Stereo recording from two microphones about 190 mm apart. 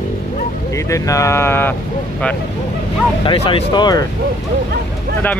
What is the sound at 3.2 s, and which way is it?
Speech, 30° left (ahead or behind).